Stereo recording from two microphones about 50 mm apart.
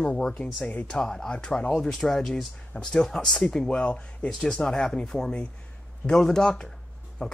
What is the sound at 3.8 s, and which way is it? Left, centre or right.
Speech, left.